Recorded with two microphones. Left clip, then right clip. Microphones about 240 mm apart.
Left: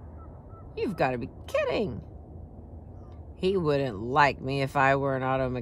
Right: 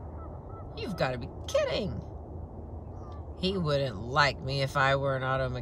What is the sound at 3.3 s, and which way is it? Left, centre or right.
Speech, centre.